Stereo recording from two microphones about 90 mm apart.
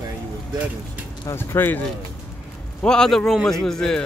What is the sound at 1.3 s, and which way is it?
Speech, 25° left (ahead or behind).